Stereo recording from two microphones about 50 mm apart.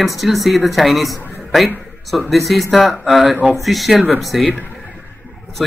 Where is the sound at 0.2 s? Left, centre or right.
Centre.